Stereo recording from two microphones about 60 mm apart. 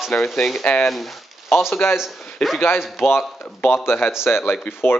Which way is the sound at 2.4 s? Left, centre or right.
Centre.